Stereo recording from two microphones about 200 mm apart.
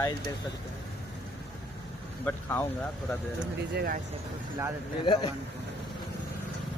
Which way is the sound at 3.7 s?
50° right (ahead or behind).